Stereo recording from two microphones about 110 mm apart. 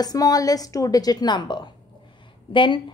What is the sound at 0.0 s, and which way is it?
A woman's voice, 35° left (ahead or behind).